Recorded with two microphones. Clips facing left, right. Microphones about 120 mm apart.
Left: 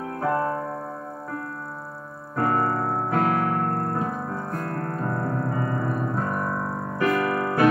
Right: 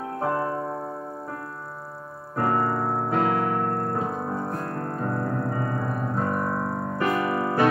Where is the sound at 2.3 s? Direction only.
25° right (ahead or behind).